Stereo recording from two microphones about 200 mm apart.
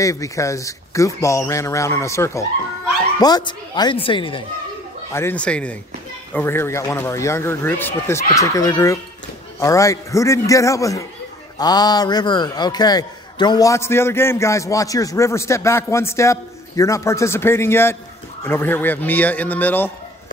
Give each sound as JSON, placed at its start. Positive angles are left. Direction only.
{"t": 0.0, "sound": "a man's voice", "side_deg": 15}
{"t": 5.1, "sound": "a man's voice", "side_deg": 10}